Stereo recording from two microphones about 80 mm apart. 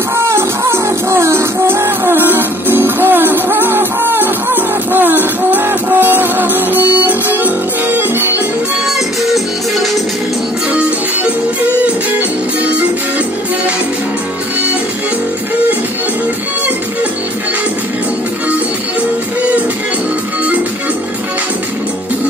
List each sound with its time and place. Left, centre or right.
0.1 s music: right
8.8 s music: centre
10.7 s music: centre